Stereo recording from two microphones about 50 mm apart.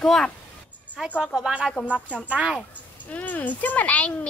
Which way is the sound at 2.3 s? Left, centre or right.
Right.